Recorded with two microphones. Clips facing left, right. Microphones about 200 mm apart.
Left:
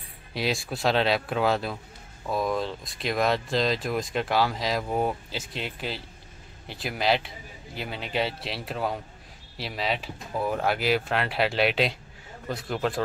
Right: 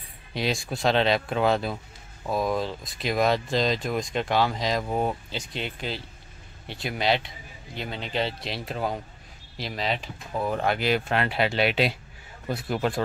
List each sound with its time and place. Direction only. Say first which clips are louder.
0.3 s speech: right 1 dB; centre (ahead or behind)